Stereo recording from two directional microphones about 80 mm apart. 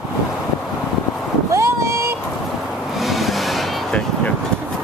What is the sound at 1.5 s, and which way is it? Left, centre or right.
Boat, right.